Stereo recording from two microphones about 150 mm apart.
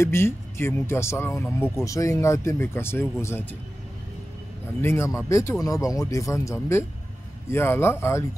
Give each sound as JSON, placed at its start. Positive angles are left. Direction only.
{"t": 0.0, "sound": "speech", "side_deg": 15}
{"t": 4.8, "sound": "speech", "side_deg": 20}